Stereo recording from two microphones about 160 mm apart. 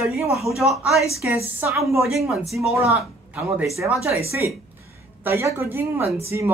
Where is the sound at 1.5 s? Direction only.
15° right (ahead or behind).